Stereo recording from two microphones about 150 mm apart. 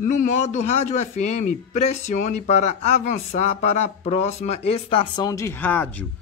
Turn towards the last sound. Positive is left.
turn(degrees=10)  # may be behind; listen again after turning